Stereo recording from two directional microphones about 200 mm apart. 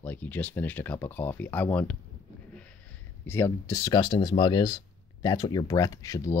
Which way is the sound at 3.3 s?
15° left (ahead or behind).